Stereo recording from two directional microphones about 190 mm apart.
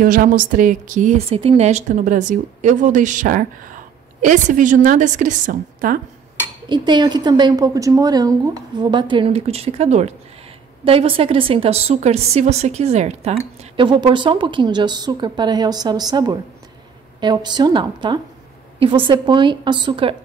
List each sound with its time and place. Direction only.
0.0 s a woman's voice: 45° right (ahead or behind)
6.7 s a woman's voice: 25° right (ahead or behind)